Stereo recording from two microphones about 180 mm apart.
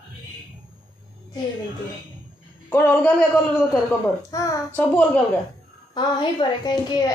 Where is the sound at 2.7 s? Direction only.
10° left (ahead or behind).